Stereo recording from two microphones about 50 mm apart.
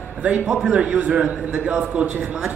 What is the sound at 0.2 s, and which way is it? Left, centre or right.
A man's voice, right.